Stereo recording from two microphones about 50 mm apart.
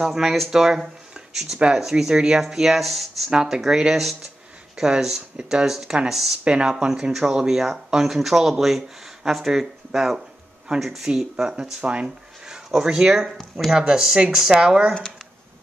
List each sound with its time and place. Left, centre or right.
0.0 s speech: centre
3.3 s speech: centre
6.4 s speech: centre
6.9 s speech: centre
11.8 s speech: right